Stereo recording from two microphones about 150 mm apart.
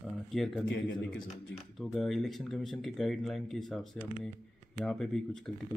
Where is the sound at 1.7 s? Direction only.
Centre (ahead or behind).